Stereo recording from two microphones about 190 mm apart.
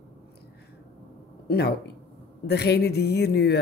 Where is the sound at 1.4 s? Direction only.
60° left (ahead or behind).